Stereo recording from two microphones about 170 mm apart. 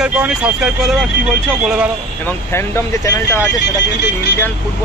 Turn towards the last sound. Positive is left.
turn(degrees=90)